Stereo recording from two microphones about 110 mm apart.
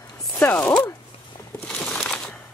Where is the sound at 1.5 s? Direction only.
15° left (ahead or behind).